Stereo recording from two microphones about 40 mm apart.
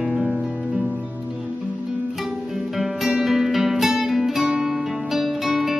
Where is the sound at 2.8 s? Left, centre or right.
Centre.